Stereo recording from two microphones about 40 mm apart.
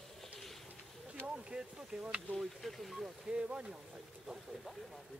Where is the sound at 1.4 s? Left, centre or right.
Right.